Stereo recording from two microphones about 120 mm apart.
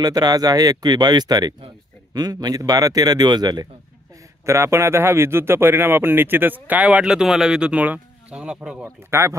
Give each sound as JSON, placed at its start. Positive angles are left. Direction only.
{"t": 0.0, "sound": "speech", "side_deg": -35}
{"t": 4.5, "sound": "speech", "side_deg": -20}
{"t": 8.8, "sound": "speech", "side_deg": -25}